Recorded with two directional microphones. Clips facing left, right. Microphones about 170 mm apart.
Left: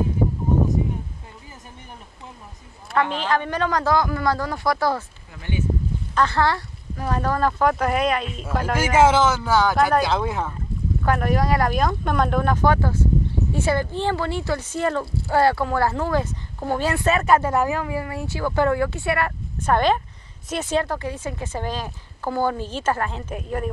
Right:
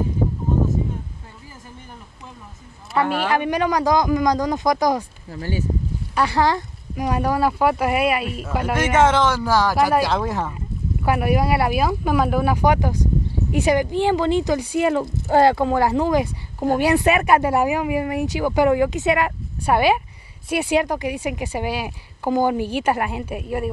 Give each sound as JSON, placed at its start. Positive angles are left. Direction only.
{"t": 2.9, "sound": "a sound", "side_deg": -5}
{"t": 3.3, "sound": "speech", "side_deg": -15}
{"t": 5.4, "sound": "speech", "side_deg": -35}
{"t": 6.1, "sound": "speech", "side_deg": -15}
{"t": 8.7, "sound": "speech", "side_deg": 10}
{"t": 11.1, "sound": "speech", "side_deg": -10}